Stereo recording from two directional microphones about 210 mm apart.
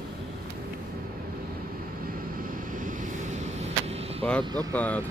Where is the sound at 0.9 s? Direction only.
45° right (ahead or behind); by 4.3 s 30° right (ahead or behind).